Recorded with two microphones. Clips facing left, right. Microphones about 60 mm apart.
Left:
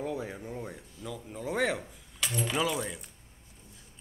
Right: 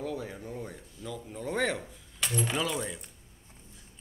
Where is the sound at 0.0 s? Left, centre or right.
Centre.